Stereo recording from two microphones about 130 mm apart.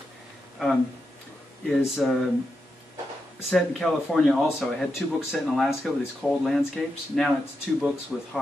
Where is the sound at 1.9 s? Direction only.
Centre (ahead or behind).